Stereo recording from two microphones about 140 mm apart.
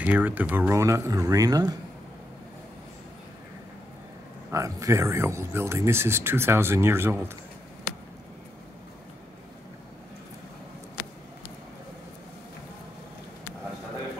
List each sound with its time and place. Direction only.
0.0 s speech: 10° right (ahead or behind); by 1.8 s 25° right (ahead or behind)
4.5 s speech: 20° right (ahead or behind)